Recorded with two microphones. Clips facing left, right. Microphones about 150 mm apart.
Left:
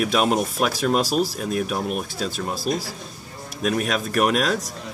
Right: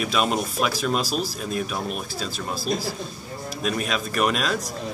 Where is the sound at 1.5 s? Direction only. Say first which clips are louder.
Left 3 dB; 65° left (ahead or behind).